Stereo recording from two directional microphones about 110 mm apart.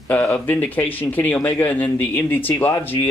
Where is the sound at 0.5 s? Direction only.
15° left (ahead or behind).